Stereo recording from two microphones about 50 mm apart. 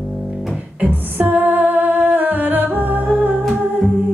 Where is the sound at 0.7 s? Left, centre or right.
Right.